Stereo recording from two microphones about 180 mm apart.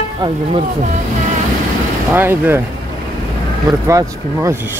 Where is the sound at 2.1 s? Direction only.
10° right (ahead or behind).